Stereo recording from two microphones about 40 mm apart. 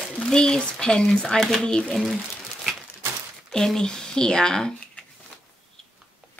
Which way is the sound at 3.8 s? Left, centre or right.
Centre.